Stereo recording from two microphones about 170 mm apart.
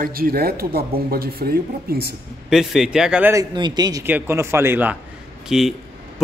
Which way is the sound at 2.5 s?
5° right (ahead or behind).